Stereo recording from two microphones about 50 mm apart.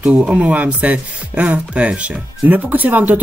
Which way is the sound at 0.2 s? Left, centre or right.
Right.